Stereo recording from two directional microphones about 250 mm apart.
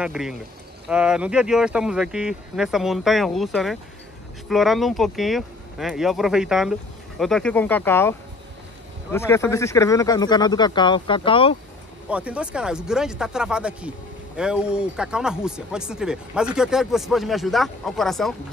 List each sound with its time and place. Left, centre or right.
0.0 s speech: centre; by 11.5 s left
12.1 s speech: centre